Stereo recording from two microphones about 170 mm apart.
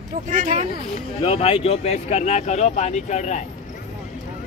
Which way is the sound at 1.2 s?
35° left (ahead or behind).